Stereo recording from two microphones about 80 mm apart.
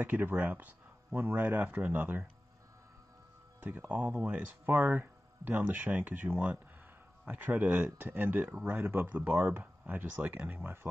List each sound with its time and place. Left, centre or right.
0.0 s speech: right
3.6 s speech: right